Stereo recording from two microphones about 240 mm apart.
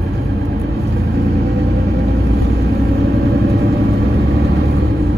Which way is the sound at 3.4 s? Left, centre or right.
Right.